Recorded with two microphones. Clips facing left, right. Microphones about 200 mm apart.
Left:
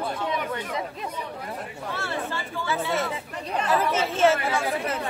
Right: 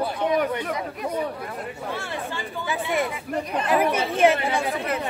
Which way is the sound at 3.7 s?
15° right (ahead or behind).